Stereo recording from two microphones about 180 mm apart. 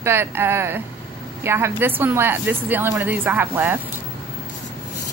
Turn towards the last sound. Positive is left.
turn(degrees=-10)  # may be behind; listen again after turning